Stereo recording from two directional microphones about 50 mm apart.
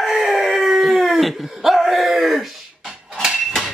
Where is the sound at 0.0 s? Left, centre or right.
Centre.